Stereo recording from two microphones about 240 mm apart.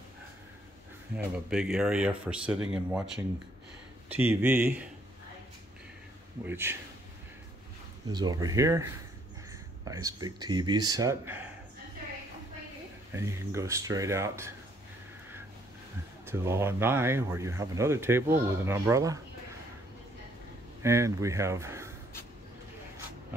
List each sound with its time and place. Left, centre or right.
1.1 s speech: centre
4.1 s speech: centre
6.4 s speech: centre
8.1 s speech: centre
13.1 s speech: centre
16.3 s speech: centre
20.8 s speech: centre